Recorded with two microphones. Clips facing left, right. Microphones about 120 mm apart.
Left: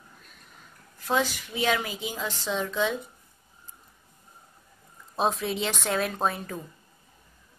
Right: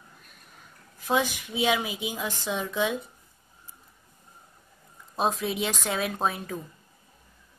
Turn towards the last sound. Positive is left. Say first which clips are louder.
# even
turn(degrees=0)  # may be behind; listen again after turning